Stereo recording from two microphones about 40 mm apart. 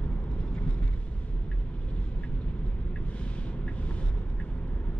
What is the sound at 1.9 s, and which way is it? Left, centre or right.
Vehicle, left.